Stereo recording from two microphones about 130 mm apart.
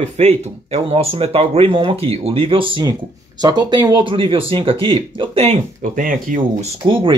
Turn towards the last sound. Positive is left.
turn(degrees=-40)  # may be behind; listen again after turning